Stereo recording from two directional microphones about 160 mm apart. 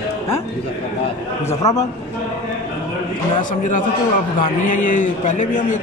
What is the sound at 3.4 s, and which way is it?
Speech, 55° left (ahead or behind).